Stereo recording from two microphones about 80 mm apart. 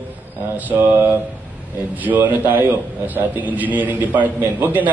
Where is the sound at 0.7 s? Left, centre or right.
Right.